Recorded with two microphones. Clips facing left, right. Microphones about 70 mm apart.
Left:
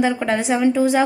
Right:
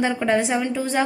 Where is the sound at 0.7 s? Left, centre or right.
Centre.